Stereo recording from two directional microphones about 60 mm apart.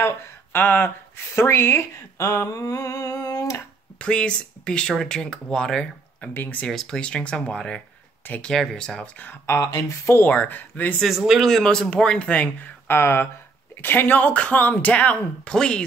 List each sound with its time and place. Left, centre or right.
0.0 s speech: left
2.5 s humming: left
4.0 s speech: centre
6.3 s a woman's voice: left
6.6 s speech: centre
9.0 s speech: left
9.5 s humming: left
9.8 s speech: left
10.2 s speech: left
11.0 s speech: centre
11.4 s speech: centre
12.8 s a woman's voice: left; by 15.8 s centre